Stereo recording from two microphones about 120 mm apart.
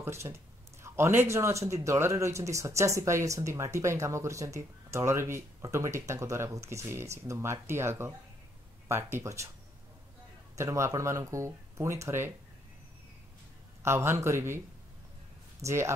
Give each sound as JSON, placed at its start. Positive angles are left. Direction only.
{"t": 0.0, "sound": "speech", "side_deg": -25}
{"t": 10.5, "sound": "speech", "side_deg": -25}
{"t": 13.8, "sound": "speech", "side_deg": -20}
{"t": 15.6, "sound": "speech", "side_deg": -25}